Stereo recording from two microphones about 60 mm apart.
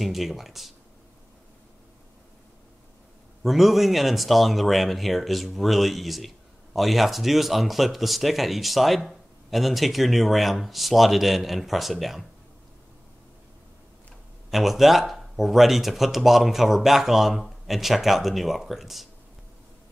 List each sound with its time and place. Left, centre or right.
0.0 s speech: centre
3.4 s speech: centre
14.5 s speech: centre